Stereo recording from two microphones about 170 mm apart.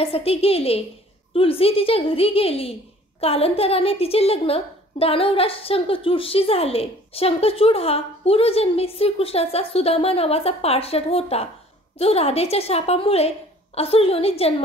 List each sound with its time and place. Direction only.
0.0 s a woman's voice: 35° left (ahead or behind)